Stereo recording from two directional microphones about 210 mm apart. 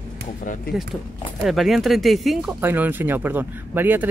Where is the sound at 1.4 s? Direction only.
Centre (ahead or behind).